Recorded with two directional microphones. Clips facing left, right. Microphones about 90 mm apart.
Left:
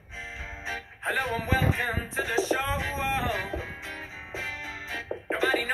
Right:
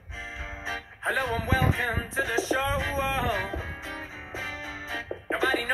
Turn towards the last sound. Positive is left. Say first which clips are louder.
# even
turn(degrees=-30)  # may be behind; listen again after turning